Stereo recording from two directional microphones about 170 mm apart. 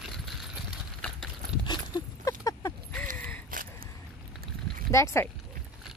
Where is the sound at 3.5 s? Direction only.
55° right (ahead or behind).